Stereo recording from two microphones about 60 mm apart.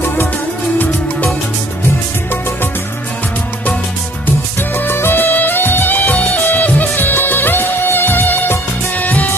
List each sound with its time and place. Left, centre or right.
0.0 s music: left
4.6 s music: left